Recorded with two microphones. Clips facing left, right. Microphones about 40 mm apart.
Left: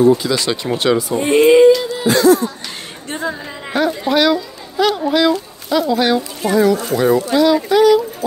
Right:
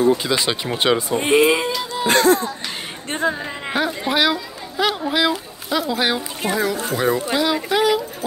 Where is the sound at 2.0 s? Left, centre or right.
Right.